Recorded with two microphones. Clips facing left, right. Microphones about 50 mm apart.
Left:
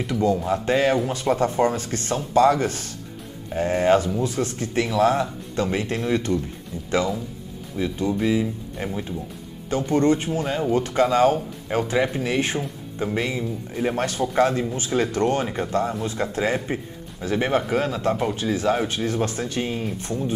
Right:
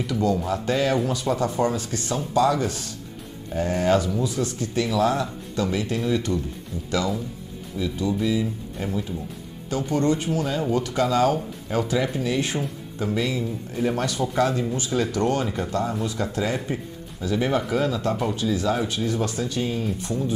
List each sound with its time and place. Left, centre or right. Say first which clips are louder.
0.1 s a man's voice: left 2 dB; left
3.5 s speech: left 2 dB; left
7.7 s a man's voice: left 1 dB; left